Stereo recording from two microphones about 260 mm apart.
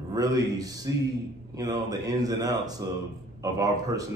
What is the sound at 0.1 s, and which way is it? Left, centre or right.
A man's voice, centre.